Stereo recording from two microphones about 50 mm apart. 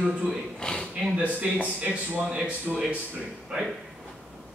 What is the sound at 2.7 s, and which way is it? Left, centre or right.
Speech, centre.